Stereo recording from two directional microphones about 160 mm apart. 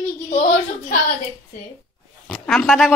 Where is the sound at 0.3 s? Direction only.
50° left (ahead or behind).